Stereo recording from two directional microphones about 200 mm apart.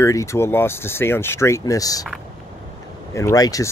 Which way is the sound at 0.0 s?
15° left (ahead or behind).